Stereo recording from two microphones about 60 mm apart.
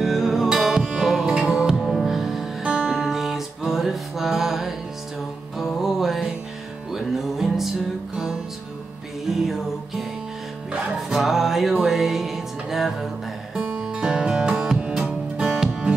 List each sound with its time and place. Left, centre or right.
0.0 s music: centre
1.8 s music: centre
9.3 s music: centre
10.7 s music: centre